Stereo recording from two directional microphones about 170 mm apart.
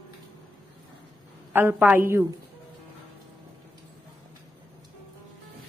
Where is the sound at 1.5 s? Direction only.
10° right (ahead or behind).